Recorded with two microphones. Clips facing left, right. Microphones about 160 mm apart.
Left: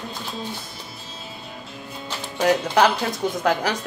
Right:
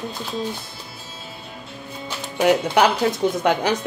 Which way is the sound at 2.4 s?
20° right (ahead or behind).